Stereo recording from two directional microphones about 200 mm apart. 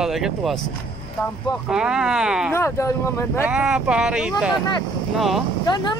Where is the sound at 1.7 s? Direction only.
5° right (ahead or behind).